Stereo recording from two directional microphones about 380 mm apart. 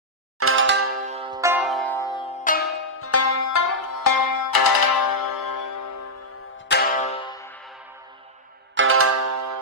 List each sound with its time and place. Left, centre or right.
0.4 s music: right
1.1 s music: centre
3.0 s music: left
6.7 s music: left
7.2 s music: centre
8.7 s music: right